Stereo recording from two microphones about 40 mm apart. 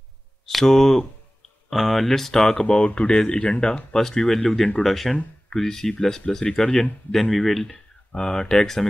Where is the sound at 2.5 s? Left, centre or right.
Left.